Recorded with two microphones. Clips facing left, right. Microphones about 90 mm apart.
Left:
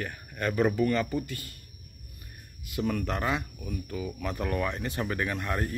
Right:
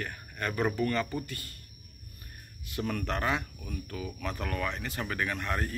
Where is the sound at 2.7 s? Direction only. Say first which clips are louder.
Left 3 dB; 5° left (ahead or behind).